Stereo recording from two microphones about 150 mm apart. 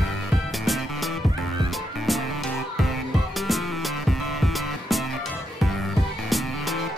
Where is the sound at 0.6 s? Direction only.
Centre (ahead or behind).